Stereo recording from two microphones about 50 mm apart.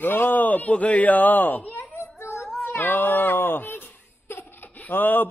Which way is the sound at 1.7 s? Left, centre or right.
Left.